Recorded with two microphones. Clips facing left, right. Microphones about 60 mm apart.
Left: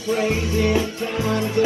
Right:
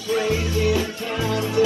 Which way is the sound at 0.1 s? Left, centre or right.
Left.